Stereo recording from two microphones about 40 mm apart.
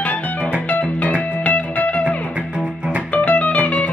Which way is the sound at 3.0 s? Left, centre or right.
Left.